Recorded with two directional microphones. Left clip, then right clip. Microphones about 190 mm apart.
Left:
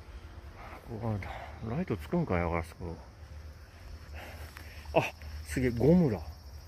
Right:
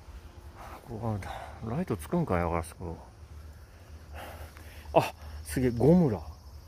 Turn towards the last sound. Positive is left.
turn(degrees=-20)  # may be behind; listen again after turning